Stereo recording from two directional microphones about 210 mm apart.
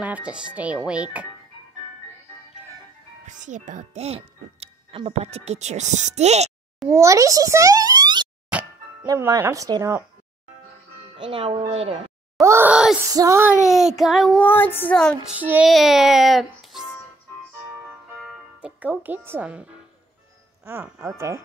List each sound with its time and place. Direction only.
0.0 s child singing: 5° right (ahead or behind)
3.3 s speech: 35° right (ahead or behind)
6.9 s a child's voice: 15° right (ahead or behind)
8.5 s music: 5° right (ahead or behind)
9.0 s speech: 15° right (ahead or behind)
11.1 s speech: 25° right (ahead or behind)
12.4 s groan: 10° right (ahead or behind)
13.1 s speech: 15° right (ahead or behind)
13.7 s child singing: centre (ahead or behind)
15.3 s child singing: 5° right (ahead or behind)
18.2 s speech: 5° right (ahead or behind)